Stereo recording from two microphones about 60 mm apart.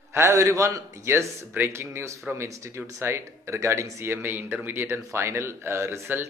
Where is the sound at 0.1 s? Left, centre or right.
Right.